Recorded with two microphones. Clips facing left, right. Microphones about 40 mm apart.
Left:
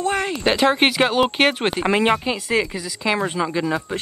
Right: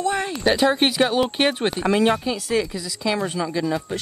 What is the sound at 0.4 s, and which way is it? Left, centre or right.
Speech, left.